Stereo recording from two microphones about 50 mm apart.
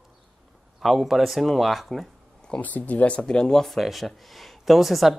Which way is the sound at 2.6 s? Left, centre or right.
Left.